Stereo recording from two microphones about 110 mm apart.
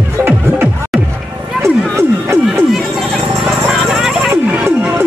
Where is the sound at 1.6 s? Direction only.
25° right (ahead or behind).